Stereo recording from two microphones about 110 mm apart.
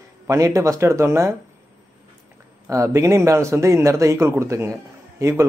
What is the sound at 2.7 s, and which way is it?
Speech, 30° right (ahead or behind).